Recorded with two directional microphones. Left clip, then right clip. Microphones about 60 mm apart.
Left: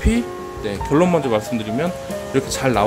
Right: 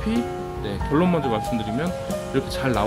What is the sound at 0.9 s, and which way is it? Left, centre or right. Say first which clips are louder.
Speech: left 5 dB; centre.